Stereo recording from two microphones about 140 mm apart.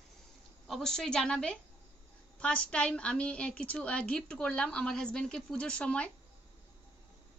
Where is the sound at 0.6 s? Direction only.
Centre (ahead or behind).